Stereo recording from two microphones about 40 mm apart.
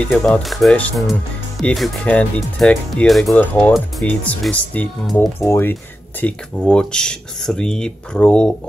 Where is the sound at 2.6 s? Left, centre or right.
Left.